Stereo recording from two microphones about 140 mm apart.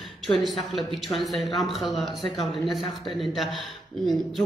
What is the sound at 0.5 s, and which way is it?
A man's voice, centre (ahead or behind).